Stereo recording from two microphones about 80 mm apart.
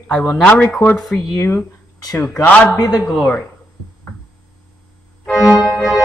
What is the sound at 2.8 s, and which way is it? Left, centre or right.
Speech, left.